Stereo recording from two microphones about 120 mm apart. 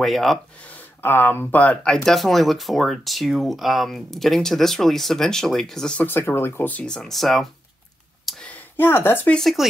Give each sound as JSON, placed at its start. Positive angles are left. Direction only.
{"t": 0.0, "sound": "speech", "side_deg": 0}
{"t": 0.7, "sound": "speech", "side_deg": 15}
{"t": 8.3, "sound": "a sound", "side_deg": 10}
{"t": 9.3, "sound": "speech", "side_deg": 0}